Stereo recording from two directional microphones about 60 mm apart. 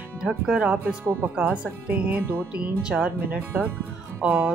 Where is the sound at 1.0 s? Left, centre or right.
Right.